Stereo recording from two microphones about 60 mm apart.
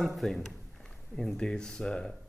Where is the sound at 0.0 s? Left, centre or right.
Centre.